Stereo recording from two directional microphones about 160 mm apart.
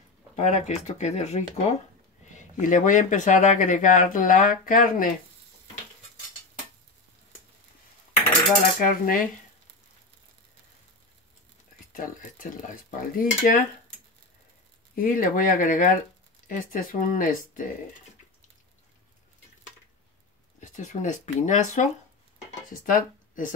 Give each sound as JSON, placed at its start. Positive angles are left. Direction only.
{"t": 0.4, "sound": "speech", "side_deg": 45}
{"t": 8.7, "sound": "speech", "side_deg": 60}
{"t": 11.9, "sound": "speech", "side_deg": 60}
{"t": 15.0, "sound": "speech", "side_deg": 60}
{"t": 20.7, "sound": "speech", "side_deg": 50}
{"t": 22.5, "sound": "a sound", "side_deg": 60}